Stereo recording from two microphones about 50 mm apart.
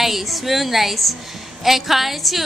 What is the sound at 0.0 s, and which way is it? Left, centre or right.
A woman's voice, centre.